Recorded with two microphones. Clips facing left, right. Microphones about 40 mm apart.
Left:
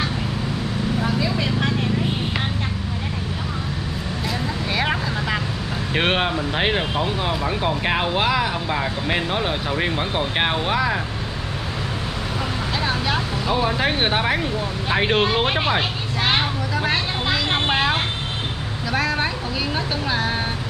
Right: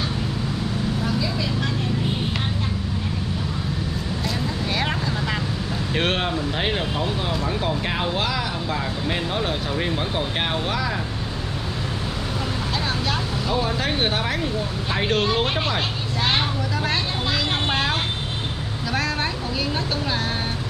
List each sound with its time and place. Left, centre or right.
1.0 s vehicle: left
4.7 s vehicle: centre
5.9 s speech: left
12.8 s speech: centre
16.3 s vehicle: centre